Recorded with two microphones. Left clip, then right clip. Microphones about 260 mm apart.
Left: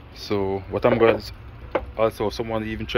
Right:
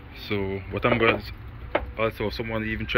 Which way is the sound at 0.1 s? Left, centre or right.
Centre.